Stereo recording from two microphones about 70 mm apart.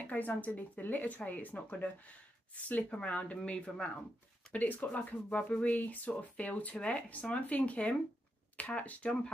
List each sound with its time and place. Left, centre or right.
0.0 s speech: left
4.5 s speech: left
5.4 s a sound: centre
5.7 s speech: left